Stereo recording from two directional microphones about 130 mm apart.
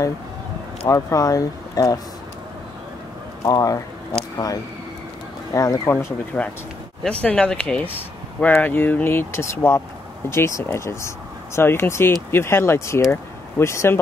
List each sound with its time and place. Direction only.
0.8 s speech: 25° left (ahead or behind)
3.4 s speech: 30° left (ahead or behind)
5.5 s speech: 25° left (ahead or behind)